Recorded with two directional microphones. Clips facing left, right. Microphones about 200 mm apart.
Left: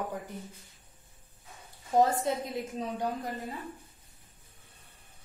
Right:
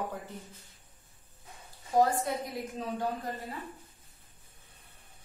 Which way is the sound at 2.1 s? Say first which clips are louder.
Left 2 dB; 25° left (ahead or behind).